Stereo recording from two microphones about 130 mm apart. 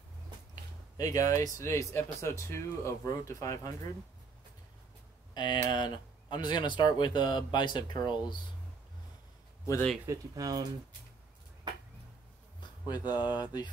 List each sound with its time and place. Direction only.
0.9 s speech: 25° left (ahead or behind)
5.3 s speech: 35° left (ahead or behind)
10.0 s speech: 25° right (ahead or behind)
12.5 s a sound: 35° left (ahead or behind)
13.1 s speech: 10° right (ahead or behind)